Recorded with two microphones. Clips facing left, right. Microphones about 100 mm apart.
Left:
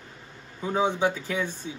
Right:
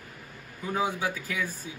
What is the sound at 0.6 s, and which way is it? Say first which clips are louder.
Speech: left 5 dB; 25° left (ahead or behind).